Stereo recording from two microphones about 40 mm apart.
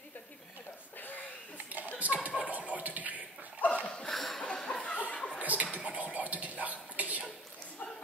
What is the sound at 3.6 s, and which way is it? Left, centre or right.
Dog, left.